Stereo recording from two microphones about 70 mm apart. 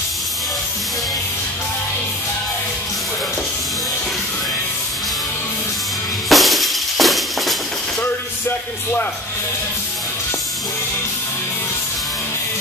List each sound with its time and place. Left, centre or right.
6.2 s music: centre
8.0 s music: left